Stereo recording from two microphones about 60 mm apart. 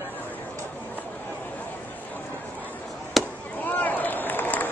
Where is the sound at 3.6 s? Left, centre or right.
Left.